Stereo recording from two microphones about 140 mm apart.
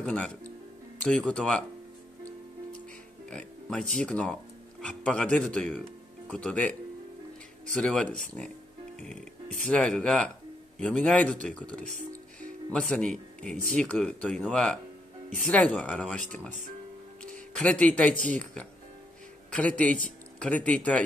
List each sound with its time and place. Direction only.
0.0 s speech: 5° left (ahead or behind)
3.3 s speech: 5° left (ahead or behind)
9.7 s speech: 5° left (ahead or behind)
12.4 s music: 5° left (ahead or behind)
13.7 s speech: 10° left (ahead or behind)
17.6 s speech: 10° left (ahead or behind)